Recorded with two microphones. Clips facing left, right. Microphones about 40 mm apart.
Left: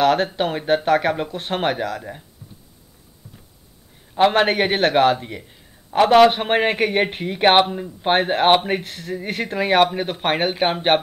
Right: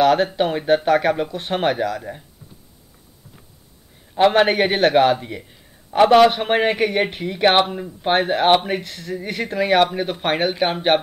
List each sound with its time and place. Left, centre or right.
0.0 s speech: centre
4.1 s a man's voice: centre
7.6 s speech: centre
8.0 s a man's voice: centre